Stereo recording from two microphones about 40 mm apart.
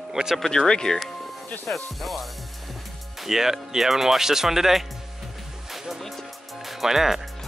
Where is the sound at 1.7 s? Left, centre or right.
Centre.